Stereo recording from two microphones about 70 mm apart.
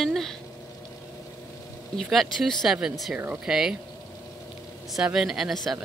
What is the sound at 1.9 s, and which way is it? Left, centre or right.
Speech, centre.